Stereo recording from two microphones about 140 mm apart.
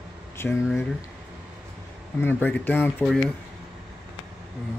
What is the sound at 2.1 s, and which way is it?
Speech, 15° left (ahead or behind).